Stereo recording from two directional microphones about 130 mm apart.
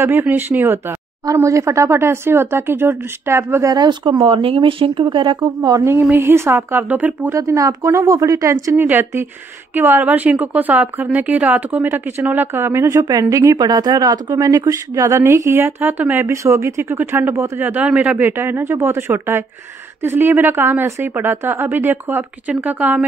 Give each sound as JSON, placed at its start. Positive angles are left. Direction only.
{"t": 0.0, "sound": "a woman's voice", "side_deg": -20}
{"t": 3.7, "sound": "speech", "side_deg": -35}
{"t": 5.9, "sound": "a woman's voice", "side_deg": -15}
{"t": 7.3, "sound": "a woman's voice", "side_deg": -25}